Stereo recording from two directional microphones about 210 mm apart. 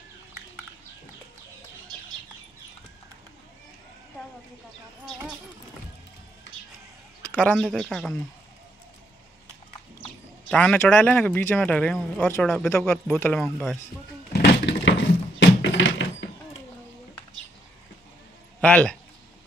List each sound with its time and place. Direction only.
7.3 s speech: 5° left (ahead or behind)
10.5 s speech: 5° left (ahead or behind)
14.7 s a sound: 60° left (ahead or behind)
18.6 s speech: 5° left (ahead or behind)